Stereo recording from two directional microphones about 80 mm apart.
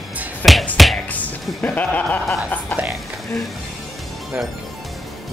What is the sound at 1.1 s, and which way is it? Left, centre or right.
Music, left.